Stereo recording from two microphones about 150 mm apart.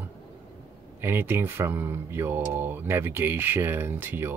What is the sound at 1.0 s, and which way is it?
Speech, 15° right (ahead or behind).